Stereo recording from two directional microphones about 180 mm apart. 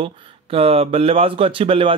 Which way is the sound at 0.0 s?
30° right (ahead or behind).